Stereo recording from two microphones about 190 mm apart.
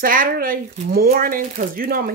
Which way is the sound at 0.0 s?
50° right (ahead or behind).